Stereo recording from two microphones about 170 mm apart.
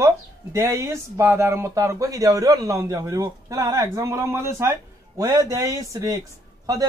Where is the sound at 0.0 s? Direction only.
15° right (ahead or behind).